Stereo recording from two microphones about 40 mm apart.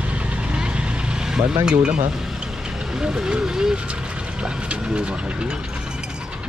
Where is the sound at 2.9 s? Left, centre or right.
Centre.